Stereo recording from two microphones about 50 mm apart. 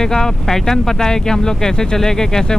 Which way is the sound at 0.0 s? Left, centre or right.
Centre.